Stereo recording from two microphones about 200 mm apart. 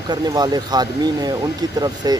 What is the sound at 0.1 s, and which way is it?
A man's voice, 20° right (ahead or behind).